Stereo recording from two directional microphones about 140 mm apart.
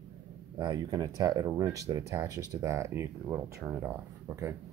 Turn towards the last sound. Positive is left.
turn(degrees=-15)  # may be behind; listen again after turning